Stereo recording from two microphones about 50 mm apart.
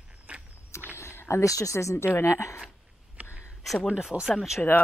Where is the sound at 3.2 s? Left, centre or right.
Right.